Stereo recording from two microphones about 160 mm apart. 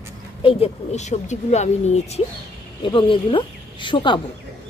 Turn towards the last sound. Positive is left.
turn(degrees=30)  # may be behind; listen again after turning